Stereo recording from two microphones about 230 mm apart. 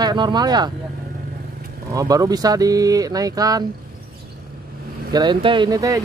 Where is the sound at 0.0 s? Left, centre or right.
Centre.